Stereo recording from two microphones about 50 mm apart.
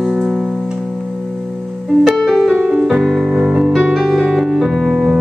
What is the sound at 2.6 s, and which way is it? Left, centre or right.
Music, centre.